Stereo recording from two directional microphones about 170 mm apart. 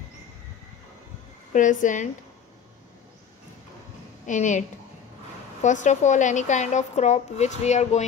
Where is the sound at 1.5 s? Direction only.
50° left (ahead or behind).